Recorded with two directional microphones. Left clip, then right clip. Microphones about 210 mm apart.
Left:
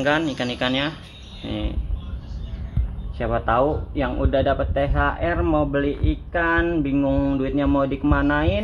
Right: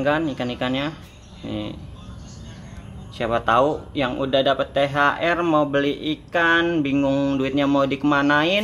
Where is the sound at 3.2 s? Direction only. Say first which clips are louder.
Right 2 dB; 10° right (ahead or behind).